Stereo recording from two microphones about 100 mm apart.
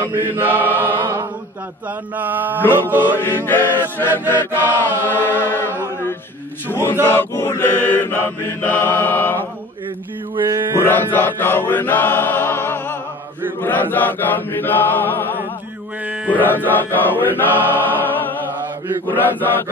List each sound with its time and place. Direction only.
0.3 s chant: 20° right (ahead or behind)
2.1 s a sound: 15° right (ahead or behind)
2.7 s mantra: 20° right (ahead or behind)
3.2 s chant: 20° left (ahead or behind)
10.4 s mantra: 30° right (ahead or behind)
10.8 s chant: 20° left (ahead or behind)
16.3 s mantra: 20° left (ahead or behind)
19.0 s chant: 20° left (ahead or behind)